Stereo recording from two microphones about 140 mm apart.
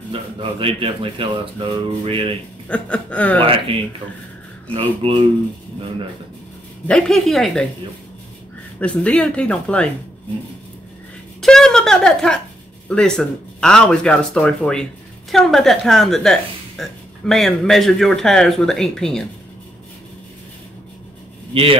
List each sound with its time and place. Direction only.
0.1 s speech: 40° right (ahead or behind)
2.7 s speech: 10° left (ahead or behind)
3.4 s speech: 40° right (ahead or behind)
5.0 s speech: 40° right (ahead or behind)
6.9 s a woman's voice: 5° left (ahead or behind)
8.7 s speech: 10° left (ahead or behind)
11.4 s a woman's voice: 5° left (ahead or behind)